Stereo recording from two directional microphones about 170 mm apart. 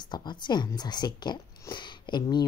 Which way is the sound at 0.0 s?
25° left (ahead or behind).